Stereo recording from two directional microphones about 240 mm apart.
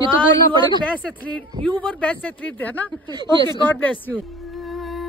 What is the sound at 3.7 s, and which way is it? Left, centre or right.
Speech, centre.